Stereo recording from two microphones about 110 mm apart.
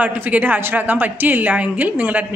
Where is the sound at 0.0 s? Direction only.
15° right (ahead or behind).